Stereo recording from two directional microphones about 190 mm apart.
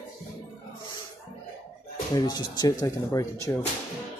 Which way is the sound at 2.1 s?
20° left (ahead or behind).